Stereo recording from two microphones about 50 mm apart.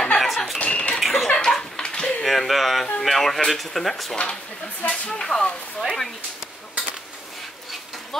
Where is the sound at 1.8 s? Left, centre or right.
Centre.